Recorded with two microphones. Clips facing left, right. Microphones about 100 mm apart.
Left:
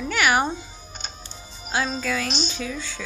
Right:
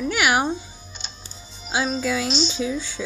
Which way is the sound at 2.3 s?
50° left (ahead or behind).